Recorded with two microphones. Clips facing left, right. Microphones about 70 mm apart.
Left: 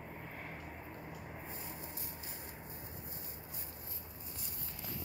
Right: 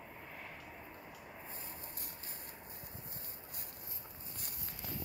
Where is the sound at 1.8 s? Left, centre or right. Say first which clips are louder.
Left 3 dB; right.